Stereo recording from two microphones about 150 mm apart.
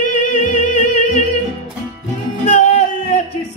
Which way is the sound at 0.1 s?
55° left (ahead or behind).